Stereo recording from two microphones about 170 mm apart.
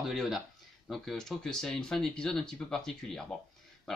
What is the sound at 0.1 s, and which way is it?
A man's voice, centre (ahead or behind).